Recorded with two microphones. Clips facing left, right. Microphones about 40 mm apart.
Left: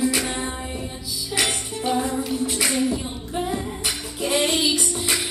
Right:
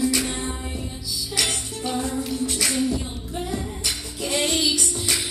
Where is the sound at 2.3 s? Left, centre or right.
Centre.